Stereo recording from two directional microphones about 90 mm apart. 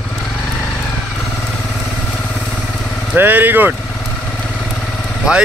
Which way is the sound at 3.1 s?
20° right (ahead or behind).